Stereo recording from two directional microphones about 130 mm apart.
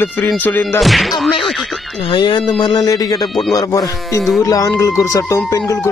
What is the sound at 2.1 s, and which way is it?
Speech, 40° left (ahead or behind).